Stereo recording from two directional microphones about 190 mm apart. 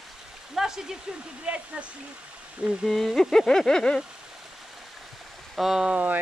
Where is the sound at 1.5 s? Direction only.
5° right (ahead or behind).